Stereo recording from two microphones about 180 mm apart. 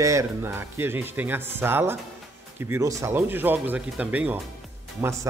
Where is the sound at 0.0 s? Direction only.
15° right (ahead or behind).